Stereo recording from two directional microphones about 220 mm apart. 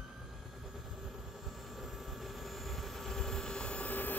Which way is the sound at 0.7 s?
Centre (ahead or behind).